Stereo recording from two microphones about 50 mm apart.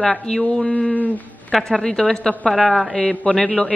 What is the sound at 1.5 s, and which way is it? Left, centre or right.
Speech, centre.